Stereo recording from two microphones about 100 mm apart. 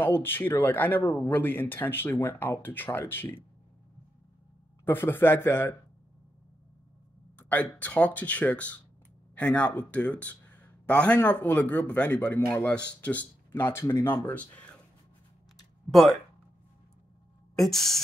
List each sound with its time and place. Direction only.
0.0 s speech: 20° left (ahead or behind)
4.8 s speech: 20° left (ahead or behind)
7.3 s speech: 15° left (ahead or behind)
15.9 s speech: centre (ahead or behind)
17.6 s speech: 5° left (ahead or behind)